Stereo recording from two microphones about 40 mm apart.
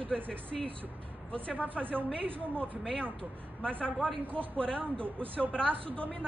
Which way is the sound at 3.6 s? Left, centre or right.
Left.